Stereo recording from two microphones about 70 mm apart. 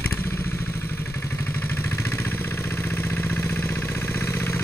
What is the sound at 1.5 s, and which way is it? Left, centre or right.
Vehicle, left.